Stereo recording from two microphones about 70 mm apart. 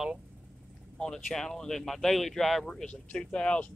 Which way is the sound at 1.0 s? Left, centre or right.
Centre.